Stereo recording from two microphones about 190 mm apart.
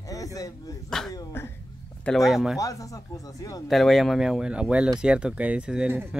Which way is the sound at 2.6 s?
15° left (ahead or behind).